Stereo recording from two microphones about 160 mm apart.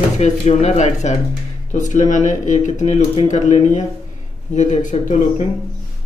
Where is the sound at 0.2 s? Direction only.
45° left (ahead or behind).